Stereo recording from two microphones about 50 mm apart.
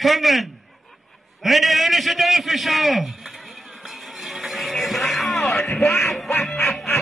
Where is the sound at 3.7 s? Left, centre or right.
Centre.